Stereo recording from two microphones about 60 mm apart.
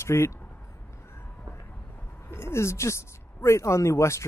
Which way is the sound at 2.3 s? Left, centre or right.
Left.